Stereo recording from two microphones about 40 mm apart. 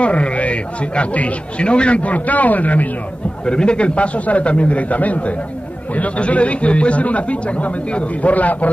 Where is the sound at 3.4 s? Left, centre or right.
Left.